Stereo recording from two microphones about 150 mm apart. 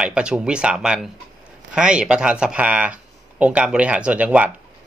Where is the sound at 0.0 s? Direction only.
5° right (ahead or behind).